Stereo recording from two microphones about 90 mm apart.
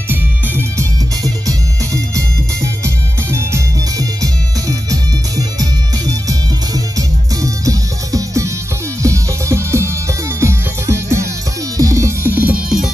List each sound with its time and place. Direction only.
0.1 s music: 25° right (ahead or behind)
2.1 s music: 35° right (ahead or behind)
5.6 s music: 40° right (ahead or behind); by 12.6 s 20° right (ahead or behind)